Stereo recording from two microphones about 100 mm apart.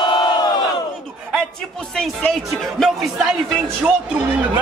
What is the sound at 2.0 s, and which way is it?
Speech, 5° left (ahead or behind).